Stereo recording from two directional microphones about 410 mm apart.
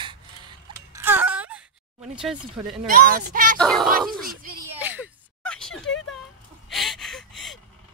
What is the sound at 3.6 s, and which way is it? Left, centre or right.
Speech, centre.